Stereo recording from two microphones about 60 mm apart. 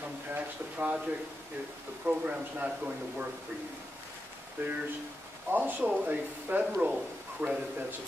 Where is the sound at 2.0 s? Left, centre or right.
Centre.